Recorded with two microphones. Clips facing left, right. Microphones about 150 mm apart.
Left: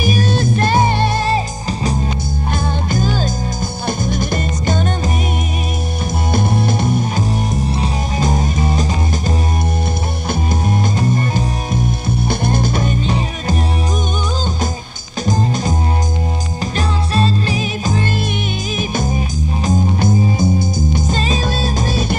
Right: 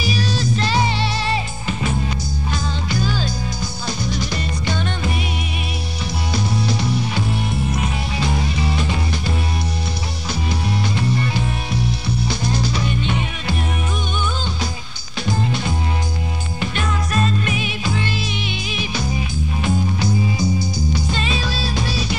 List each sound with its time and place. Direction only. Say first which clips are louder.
0.0 s music: left 5 dB; 50° left (ahead or behind)
6.3 s music: left 4 dB; 50° left (ahead or behind)
11.0 s music: left 4 dB; 45° left (ahead or behind)
15.2 s music: left 4 dB; 40° left (ahead or behind)
16.7 s music: left 4 dB; 30° left (ahead or behind)